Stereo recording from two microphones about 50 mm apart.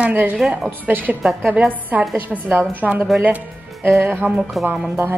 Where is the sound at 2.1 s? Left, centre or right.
Right.